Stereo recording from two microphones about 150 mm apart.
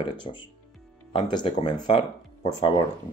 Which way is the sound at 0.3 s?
40° left (ahead or behind).